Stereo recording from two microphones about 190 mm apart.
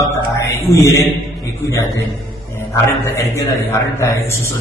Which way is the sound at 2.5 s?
15° left (ahead or behind).